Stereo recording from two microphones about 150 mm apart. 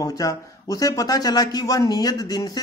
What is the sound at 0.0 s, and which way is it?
Speech, 25° left (ahead or behind).